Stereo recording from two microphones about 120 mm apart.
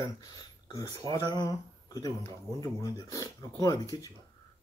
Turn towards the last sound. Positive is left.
turn(degrees=30)  # may be behind; listen again after turning